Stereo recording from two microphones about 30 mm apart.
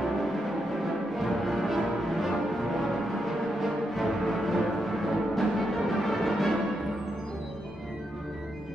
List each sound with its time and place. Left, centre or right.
1.1 s music: centre